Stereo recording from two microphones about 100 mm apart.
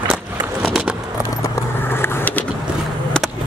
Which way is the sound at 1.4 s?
25° left (ahead or behind).